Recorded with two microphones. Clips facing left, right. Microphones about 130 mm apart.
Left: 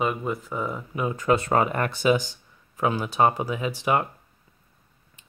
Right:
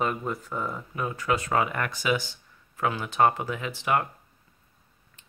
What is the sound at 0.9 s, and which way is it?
Speech, 20° left (ahead or behind).